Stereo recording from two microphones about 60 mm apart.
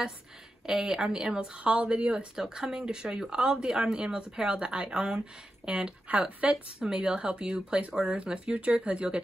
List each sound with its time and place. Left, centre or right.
0.7 s speech: centre